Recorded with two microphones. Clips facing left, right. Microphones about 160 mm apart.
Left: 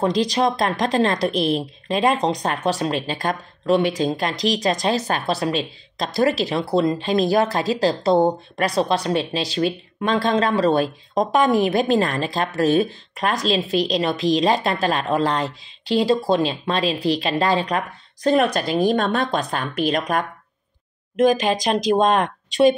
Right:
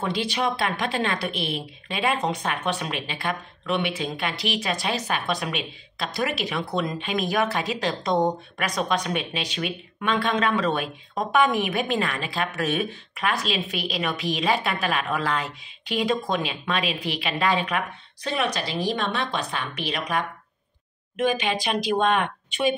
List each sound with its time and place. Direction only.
0.0 s speech: 40° left (ahead or behind)